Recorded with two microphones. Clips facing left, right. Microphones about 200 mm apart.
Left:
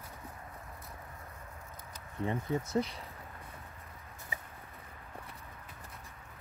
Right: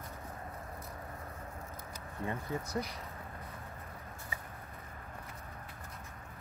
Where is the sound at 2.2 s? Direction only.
15° left (ahead or behind).